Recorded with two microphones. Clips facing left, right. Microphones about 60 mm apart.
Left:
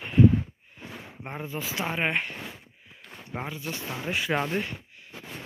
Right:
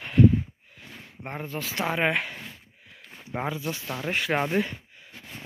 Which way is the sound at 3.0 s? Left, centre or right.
Centre.